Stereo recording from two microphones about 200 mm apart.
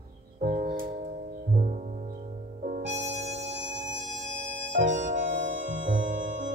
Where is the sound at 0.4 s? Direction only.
40° right (ahead or behind).